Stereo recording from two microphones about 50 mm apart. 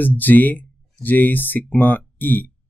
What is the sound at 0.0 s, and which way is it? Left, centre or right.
Speech, left.